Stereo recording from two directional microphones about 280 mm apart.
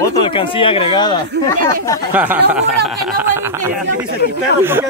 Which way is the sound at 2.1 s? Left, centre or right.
Centre.